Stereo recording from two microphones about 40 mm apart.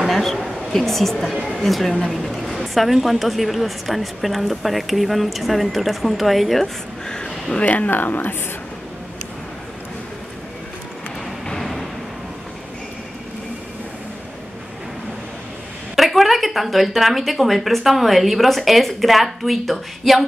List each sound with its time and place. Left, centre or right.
0.1 s a sound: centre
0.7 s speech: centre
7.1 s speech: centre
7.6 s speech: left
7.9 s speech: left
11.6 s a sound: centre
16.0 s speech: centre